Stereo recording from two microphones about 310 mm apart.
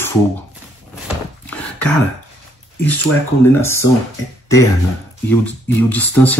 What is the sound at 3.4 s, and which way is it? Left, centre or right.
Speech, centre.